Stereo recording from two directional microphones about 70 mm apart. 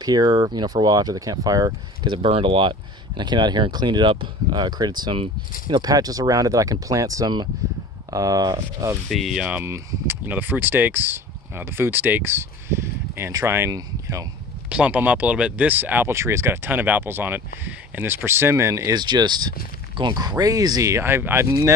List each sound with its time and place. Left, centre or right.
0.0 s speech: right
2.0 s speech: right
9.1 s speech: centre
10.0 s speech: right
14.7 s speech: centre
16.1 s speech: right
18.9 s speech: right
20.9 s speech: right